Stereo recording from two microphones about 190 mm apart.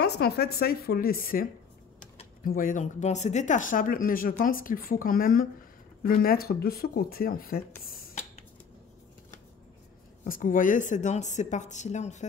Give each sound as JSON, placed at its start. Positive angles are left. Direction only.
{"t": 0.0, "sound": "speech", "side_deg": 60}
{"t": 10.2, "sound": "a woman's voice", "side_deg": 45}